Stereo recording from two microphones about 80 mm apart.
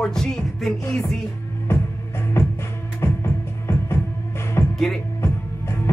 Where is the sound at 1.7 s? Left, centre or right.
Left.